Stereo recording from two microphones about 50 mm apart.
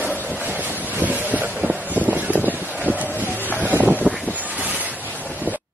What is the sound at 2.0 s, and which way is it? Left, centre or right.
Vehicle, right.